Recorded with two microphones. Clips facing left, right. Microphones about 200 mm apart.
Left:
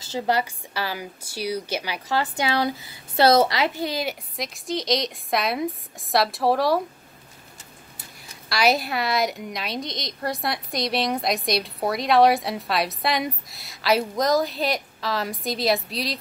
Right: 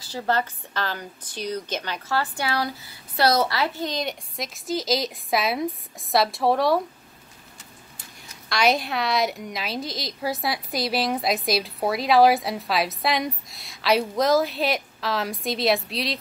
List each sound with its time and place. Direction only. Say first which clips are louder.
0.0 s a woman's voice: left 2 dB; 20° left (ahead or behind)
0.4 s a woman's voice: even; 10° left (ahead or behind)
8.5 s a woman's voice: even; 5° left (ahead or behind)